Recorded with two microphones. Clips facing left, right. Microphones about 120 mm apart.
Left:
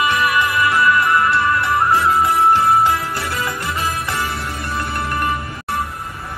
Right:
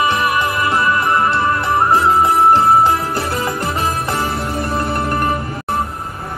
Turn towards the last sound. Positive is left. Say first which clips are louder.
# right 3 dB
turn(degrees=-35)  # may be behind; listen again after turning